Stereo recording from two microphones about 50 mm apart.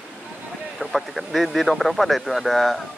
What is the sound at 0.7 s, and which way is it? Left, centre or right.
Speech, centre.